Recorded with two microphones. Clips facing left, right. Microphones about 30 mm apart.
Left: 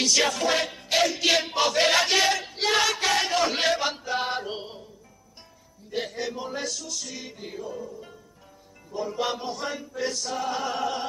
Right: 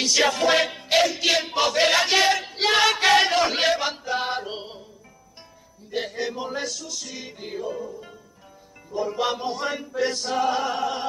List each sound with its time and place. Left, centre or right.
0.0 s battle cry: centre
0.3 s music: right
0.9 s battle cry: centre
2.9 s a sound: right
3.3 s chant: centre
5.9 s battle cry: centre
7.3 s battle cry: right
9.6 s music: centre
9.9 s music: right
10.6 s battle cry: centre